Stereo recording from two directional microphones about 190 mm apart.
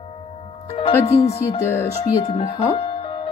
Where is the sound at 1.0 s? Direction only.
35° left (ahead or behind).